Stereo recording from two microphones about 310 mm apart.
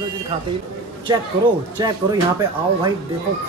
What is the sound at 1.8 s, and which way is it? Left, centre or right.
Speech, centre.